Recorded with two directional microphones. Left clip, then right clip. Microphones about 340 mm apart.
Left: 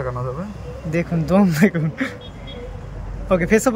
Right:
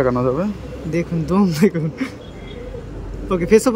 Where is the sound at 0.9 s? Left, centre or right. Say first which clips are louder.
Left 2 dB; centre.